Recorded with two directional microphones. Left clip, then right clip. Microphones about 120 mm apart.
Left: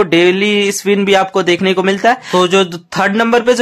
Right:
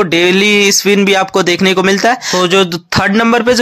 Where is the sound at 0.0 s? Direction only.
30° right (ahead or behind).